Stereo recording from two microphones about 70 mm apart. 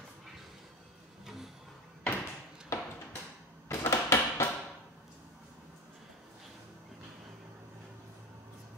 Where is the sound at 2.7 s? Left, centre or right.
Left.